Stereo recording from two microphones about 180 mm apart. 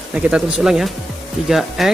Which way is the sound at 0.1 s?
5° right (ahead or behind).